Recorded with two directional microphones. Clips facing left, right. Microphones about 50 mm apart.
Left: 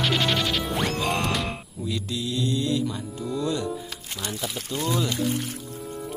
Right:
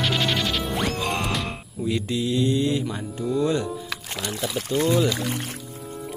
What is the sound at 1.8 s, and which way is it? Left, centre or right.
Mantra, right.